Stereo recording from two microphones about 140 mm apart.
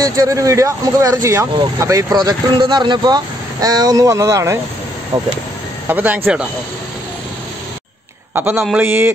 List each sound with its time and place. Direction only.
0.0 s speech: 25° right (ahead or behind)
5.1 s speech: 35° right (ahead or behind)
5.9 s speech: 10° right (ahead or behind)
8.4 s speech: 15° right (ahead or behind)